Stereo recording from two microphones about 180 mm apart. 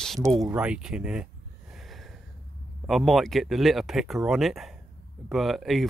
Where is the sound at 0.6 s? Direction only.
5° right (ahead or behind).